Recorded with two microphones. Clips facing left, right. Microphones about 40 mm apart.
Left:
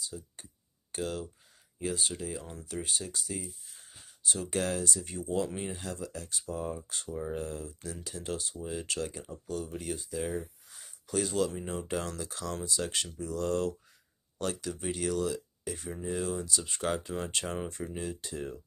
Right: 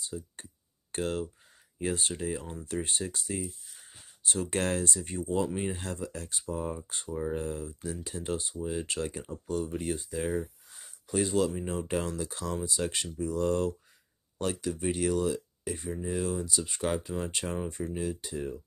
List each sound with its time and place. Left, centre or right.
0.1 s speech: centre
0.9 s speech: right
2.6 s speech: right
3.3 s speech: centre
4.3 s speech: right
4.6 s speech: right; by 7.3 s centre
7.3 s speech: right
8.5 s speech: centre
8.8 s speech: right
10.3 s a sound: centre
11.5 s speech: centre
15.9 s speech: centre